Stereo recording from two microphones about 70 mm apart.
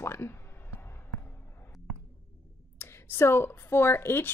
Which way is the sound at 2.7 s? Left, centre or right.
Left.